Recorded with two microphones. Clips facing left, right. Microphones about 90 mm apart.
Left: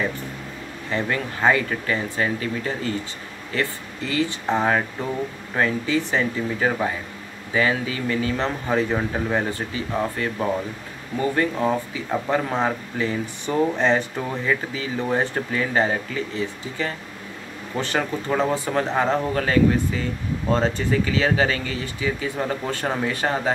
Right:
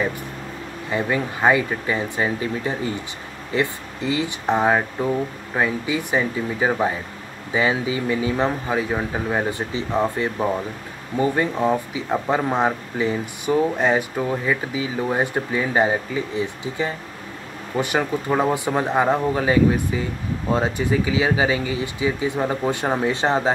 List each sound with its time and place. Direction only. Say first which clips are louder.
0.8 s speech: right 2 dB; 15° right (ahead or behind)